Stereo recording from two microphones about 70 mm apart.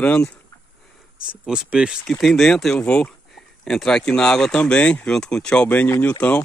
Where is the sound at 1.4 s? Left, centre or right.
Centre.